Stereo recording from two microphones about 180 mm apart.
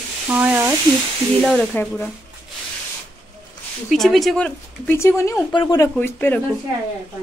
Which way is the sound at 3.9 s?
Centre (ahead or behind).